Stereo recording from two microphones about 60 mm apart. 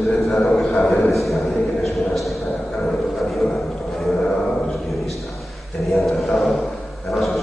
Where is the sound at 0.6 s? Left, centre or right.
Centre.